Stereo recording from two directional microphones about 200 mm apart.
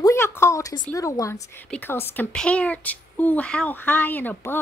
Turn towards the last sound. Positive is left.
turn(degrees=10)  # may be behind; listen again after turning